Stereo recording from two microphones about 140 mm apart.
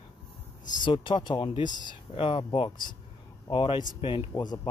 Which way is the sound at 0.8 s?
35° left (ahead or behind).